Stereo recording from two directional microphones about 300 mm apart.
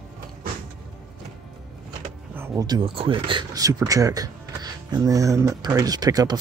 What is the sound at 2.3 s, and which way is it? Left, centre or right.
Speech, centre.